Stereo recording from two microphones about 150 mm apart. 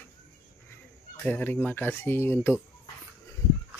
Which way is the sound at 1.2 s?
10° left (ahead or behind).